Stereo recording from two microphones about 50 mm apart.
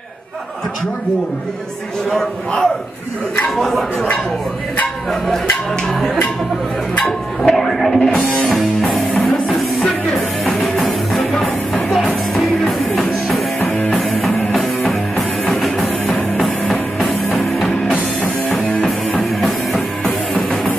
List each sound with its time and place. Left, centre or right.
2.0 s a sound: centre
3.4 s speech: centre
7.0 s a sound: centre
8.3 s music: centre
13.7 s music: left
13.9 s music: centre
17.8 s music: left
18.9 s music: centre